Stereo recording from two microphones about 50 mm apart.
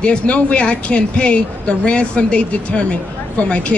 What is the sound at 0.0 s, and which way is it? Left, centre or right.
Speech, left.